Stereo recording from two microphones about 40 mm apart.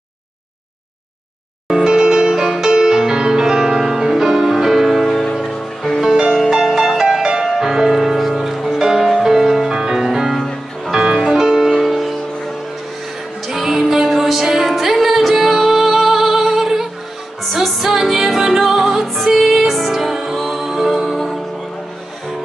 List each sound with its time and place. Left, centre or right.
1.7 s music: centre
5.2 s music: centre
5.9 s music: centre
6.5 s music: centre
11.7 s music: centre
13.5 s music: centre